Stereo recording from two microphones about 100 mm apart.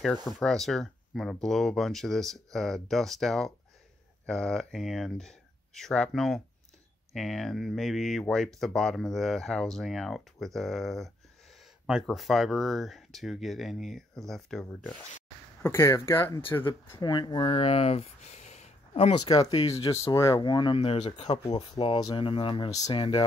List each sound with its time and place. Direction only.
0.0 s speech: 5° left (ahead or behind)
15.6 s speech: 25° left (ahead or behind)
17.0 s speech: 45° left (ahead or behind); by 18.0 s 80° left
18.5 s a sound: 80° left
19.7 s speech: 30° left (ahead or behind)
20.3 s speech: 50° left (ahead or behind)
20.7 s speech: 85° left
21.7 s speech: 65° left (ahead or behind)